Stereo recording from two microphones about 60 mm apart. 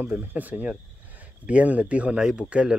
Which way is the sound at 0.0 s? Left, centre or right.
Right.